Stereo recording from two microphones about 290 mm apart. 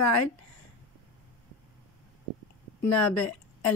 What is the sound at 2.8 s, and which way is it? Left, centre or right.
Speech, left.